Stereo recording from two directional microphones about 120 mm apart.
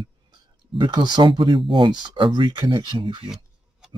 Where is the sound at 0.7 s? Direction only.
40° right (ahead or behind).